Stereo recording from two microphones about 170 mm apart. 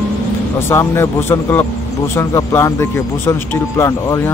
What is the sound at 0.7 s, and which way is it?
Speech, 15° left (ahead or behind).